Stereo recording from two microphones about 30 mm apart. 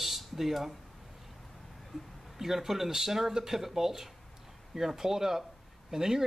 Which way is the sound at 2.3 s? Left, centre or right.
Centre.